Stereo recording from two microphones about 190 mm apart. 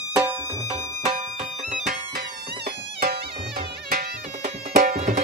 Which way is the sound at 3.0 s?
50° right (ahead or behind).